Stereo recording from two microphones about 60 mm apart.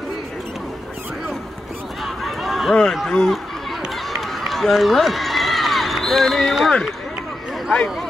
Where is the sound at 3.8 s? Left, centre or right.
Centre.